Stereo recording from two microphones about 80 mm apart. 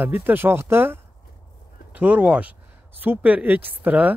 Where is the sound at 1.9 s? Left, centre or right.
Centre.